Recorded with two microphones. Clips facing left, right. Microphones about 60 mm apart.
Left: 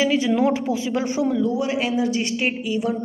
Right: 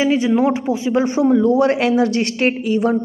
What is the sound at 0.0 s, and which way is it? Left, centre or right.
A man's voice, right.